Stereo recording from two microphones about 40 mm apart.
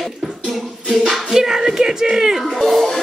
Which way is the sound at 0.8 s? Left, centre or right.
Centre.